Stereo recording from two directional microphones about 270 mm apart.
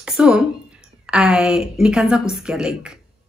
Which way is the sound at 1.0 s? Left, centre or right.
Centre.